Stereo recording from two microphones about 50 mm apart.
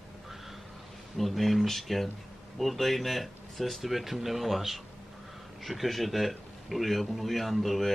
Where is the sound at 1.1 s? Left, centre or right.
Centre.